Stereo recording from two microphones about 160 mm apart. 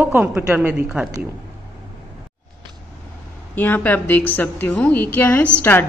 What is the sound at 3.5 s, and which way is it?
A woman's voice, 10° left (ahead or behind).